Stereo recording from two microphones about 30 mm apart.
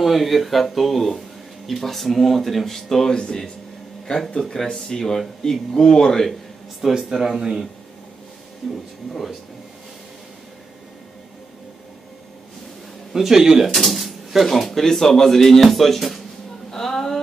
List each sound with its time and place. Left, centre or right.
0.0 s speech: centre
3.2 s speech: left
4.4 s speech: centre
7.0 s speech: centre
8.6 s speech: centre
13.1 s speech: centre
13.7 s speech: centre